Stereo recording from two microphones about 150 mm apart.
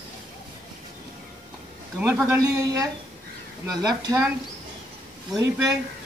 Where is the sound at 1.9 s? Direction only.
10° right (ahead or behind).